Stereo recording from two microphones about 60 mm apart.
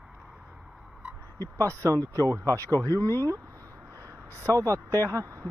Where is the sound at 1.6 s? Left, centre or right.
Right.